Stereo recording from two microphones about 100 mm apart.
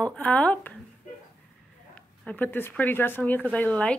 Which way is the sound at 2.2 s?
15° left (ahead or behind).